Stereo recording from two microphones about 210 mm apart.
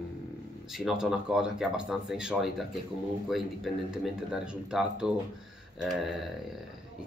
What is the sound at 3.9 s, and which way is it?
Speech, 5° right (ahead or behind).